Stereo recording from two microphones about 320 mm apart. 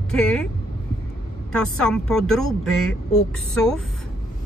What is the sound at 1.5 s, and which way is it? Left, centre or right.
Speech, centre.